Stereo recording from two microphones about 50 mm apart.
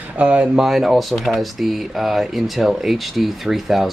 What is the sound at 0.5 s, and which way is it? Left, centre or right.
Speech, centre.